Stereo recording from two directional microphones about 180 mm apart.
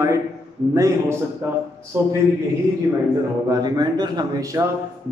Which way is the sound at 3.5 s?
20° right (ahead or behind).